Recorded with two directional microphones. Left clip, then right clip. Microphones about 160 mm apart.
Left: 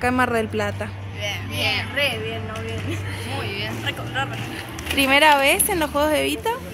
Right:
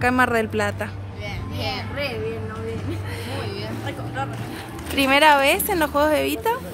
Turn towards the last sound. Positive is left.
turn(degrees=-10)  # may be behind; listen again after turning